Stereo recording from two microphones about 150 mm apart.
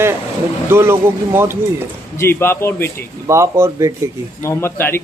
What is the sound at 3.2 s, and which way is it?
Speech, 20° right (ahead or behind).